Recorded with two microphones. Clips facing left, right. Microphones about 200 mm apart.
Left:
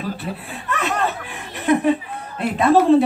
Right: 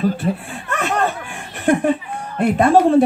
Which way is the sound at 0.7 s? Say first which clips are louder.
Right 2 dB; 50° right (ahead or behind).